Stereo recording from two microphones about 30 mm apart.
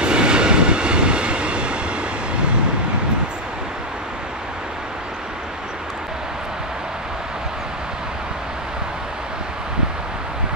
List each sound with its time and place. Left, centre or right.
0.0 s train: right